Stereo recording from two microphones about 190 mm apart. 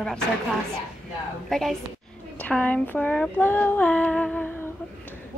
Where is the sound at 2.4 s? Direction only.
5° left (ahead or behind).